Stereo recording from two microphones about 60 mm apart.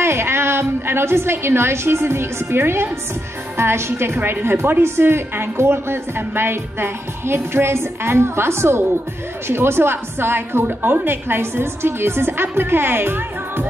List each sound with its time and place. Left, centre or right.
0.0 s a woman's voice: right